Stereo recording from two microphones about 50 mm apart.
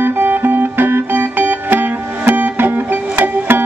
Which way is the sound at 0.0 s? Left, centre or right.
Right.